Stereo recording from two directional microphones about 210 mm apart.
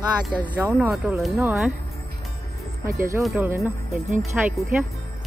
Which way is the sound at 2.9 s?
15° right (ahead or behind).